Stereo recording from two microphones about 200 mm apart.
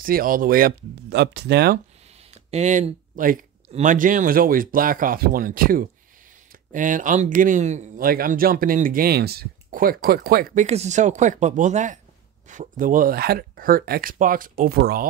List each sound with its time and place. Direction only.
0.0 s speech: 45° right (ahead or behind)
2.3 s speech: 35° right (ahead or behind)